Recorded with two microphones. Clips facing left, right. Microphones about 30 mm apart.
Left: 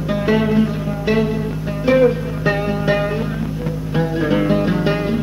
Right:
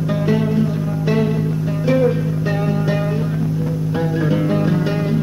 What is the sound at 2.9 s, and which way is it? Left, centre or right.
Music, left.